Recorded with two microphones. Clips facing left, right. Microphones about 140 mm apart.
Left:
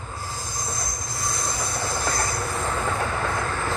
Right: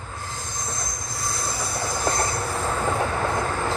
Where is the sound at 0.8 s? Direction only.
Centre (ahead or behind); by 2.3 s 20° right (ahead or behind).